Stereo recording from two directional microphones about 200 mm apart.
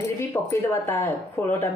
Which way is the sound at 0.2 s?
10° left (ahead or behind).